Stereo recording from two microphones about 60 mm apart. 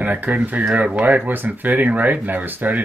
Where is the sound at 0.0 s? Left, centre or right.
Right.